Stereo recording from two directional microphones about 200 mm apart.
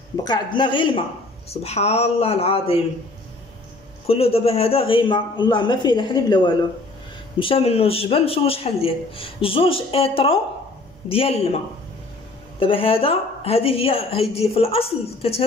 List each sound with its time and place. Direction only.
0.2 s speech: 20° left (ahead or behind)
4.1 s speech: 30° left (ahead or behind)
12.5 s speech: 25° left (ahead or behind)